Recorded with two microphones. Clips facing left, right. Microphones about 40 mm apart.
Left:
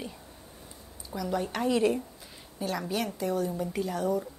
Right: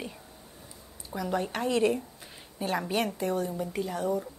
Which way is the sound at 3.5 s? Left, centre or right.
Centre.